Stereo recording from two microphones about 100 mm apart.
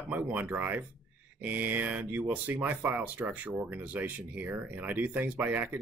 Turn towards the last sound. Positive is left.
turn(degrees=-20)  # may be behind; listen again after turning